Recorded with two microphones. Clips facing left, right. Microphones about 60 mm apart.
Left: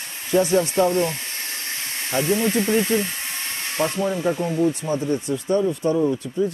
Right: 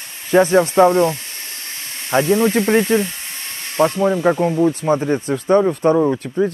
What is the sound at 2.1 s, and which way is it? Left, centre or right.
Speech, right.